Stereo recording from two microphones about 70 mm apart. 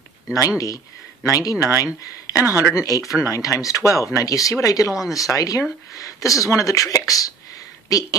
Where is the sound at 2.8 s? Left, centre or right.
Left.